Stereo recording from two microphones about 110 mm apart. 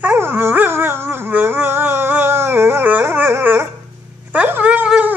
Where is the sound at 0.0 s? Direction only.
15° right (ahead or behind).